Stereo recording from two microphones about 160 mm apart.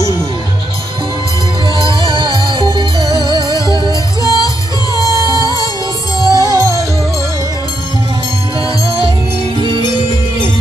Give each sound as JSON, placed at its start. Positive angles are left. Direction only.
{"t": 2.0, "sound": "music", "side_deg": -30}
{"t": 3.9, "sound": "music", "side_deg": 20}
{"t": 6.4, "sound": "music", "side_deg": -20}
{"t": 8.8, "sound": "music", "side_deg": -35}